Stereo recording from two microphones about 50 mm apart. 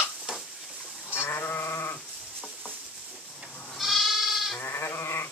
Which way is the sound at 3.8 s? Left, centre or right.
Centre.